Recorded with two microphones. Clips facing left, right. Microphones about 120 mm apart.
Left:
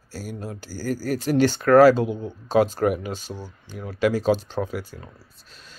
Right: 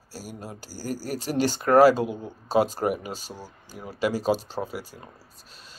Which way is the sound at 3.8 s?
5° right (ahead or behind).